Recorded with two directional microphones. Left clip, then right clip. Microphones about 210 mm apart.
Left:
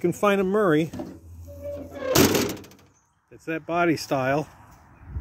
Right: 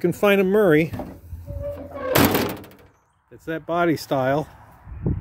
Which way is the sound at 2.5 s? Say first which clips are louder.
Right 2 dB; 25° right (ahead or behind).